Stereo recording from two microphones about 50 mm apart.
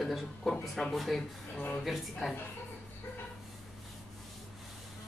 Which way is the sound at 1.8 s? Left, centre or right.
Centre.